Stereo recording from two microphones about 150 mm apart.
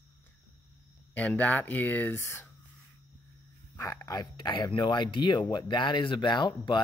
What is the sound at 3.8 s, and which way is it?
Speech, 20° left (ahead or behind).